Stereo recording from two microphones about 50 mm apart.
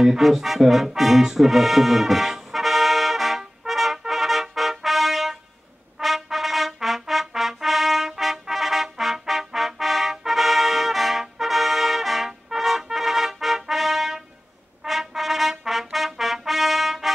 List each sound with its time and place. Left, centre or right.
0.0 s music: centre
5.9 s trumpet: centre